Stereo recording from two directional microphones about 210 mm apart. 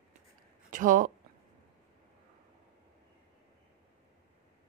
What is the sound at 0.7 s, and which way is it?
Speech, 40° right (ahead or behind).